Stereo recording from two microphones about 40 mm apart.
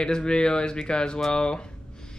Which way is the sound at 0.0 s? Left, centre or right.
Left.